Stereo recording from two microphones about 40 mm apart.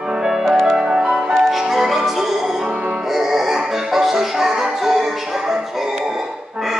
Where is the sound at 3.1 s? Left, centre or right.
Centre.